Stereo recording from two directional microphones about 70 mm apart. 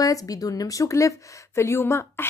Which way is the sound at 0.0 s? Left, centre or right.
Left.